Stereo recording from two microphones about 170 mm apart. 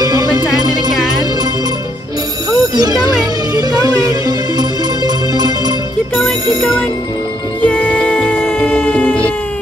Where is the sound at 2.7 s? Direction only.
20° right (ahead or behind).